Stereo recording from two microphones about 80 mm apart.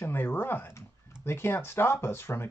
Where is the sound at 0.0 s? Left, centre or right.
Left.